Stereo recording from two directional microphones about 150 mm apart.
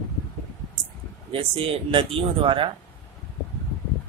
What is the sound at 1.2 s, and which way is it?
Speech, 40° right (ahead or behind).